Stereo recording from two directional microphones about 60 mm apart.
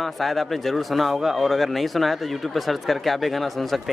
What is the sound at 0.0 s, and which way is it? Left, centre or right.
Speech, centre.